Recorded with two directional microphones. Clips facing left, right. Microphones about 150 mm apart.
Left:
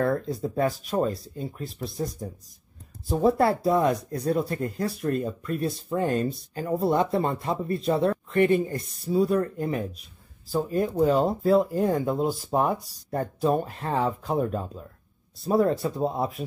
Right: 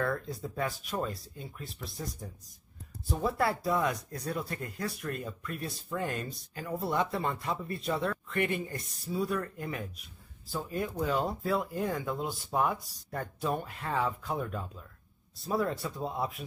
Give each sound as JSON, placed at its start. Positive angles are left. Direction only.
{"t": 0.0, "sound": "speech", "side_deg": 35}